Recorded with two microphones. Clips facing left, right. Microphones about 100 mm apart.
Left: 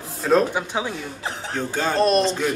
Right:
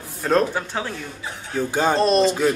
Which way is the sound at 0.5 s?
10° left (ahead or behind).